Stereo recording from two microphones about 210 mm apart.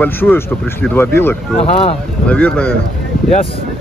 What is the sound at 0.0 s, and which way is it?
Speech, 10° left (ahead or behind).